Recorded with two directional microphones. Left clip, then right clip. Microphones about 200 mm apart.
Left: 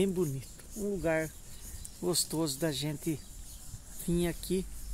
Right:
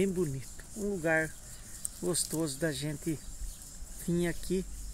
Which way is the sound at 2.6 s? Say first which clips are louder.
Even; 15° left (ahead or behind).